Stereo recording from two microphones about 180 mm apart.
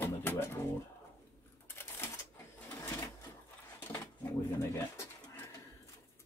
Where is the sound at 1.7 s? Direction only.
10° left (ahead or behind).